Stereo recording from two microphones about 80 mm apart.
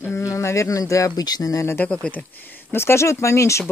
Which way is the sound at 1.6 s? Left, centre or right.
Left.